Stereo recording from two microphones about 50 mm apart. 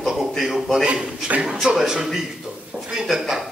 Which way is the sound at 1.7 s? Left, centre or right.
Centre.